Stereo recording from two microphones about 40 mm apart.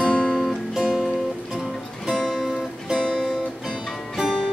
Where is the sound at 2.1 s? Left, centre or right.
Centre.